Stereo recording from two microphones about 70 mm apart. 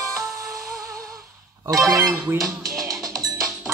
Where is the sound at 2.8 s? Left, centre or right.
Right.